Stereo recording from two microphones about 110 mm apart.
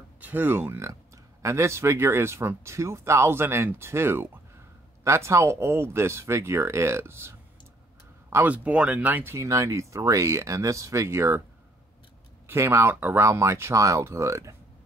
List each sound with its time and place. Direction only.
0.2 s speech: 15° right (ahead or behind)
12.4 s speech: 25° right (ahead or behind)